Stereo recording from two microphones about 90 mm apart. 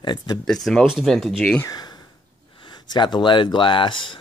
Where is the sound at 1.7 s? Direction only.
50° left (ahead or behind).